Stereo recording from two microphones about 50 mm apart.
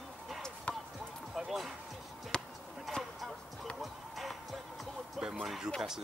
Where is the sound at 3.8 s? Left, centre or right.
Centre.